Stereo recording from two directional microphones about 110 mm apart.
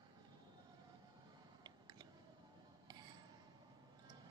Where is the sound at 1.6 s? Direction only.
40° right (ahead or behind).